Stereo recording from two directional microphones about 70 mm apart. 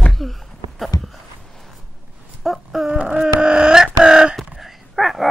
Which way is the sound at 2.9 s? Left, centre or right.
Centre.